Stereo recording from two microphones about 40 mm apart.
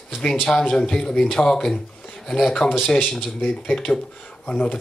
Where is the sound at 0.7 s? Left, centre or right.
Centre.